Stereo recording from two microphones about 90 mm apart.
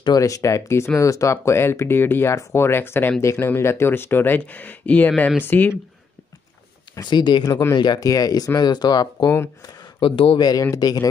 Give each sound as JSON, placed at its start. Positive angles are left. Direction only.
{"t": 0.2, "sound": "speech", "side_deg": 35}
{"t": 7.0, "sound": "speech", "side_deg": 55}
{"t": 9.9, "sound": "speech", "side_deg": 75}
{"t": 10.4, "sound": "speech", "side_deg": 40}